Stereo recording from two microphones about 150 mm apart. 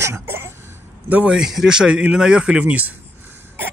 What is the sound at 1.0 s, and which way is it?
Speech, 10° right (ahead or behind).